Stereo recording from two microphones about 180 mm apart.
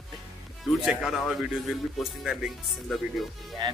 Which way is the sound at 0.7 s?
Centre (ahead or behind).